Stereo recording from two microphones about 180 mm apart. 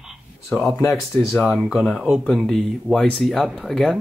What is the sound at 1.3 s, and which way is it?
Speech, centre (ahead or behind).